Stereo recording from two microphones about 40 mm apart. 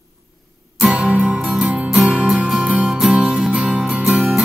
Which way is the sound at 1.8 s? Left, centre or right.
Centre.